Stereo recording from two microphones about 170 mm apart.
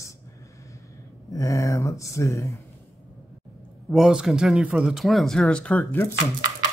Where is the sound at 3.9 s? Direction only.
5° right (ahead or behind).